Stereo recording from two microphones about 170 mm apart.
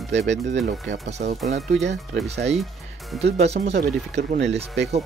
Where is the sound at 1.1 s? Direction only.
40° right (ahead or behind).